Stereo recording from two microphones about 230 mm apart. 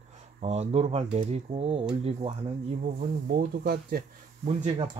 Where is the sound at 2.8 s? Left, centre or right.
Right.